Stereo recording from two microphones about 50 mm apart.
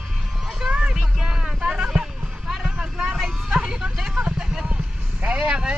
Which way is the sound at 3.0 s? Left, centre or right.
Centre.